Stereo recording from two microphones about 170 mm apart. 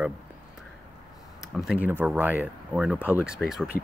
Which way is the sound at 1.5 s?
5° right (ahead or behind).